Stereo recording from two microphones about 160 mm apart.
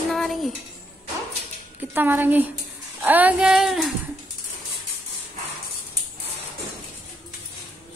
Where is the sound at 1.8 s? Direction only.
10° right (ahead or behind).